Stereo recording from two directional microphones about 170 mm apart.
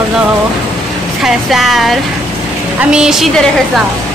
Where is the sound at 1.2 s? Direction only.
Centre (ahead or behind).